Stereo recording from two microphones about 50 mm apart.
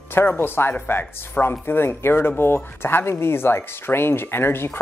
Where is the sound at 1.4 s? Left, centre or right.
Left.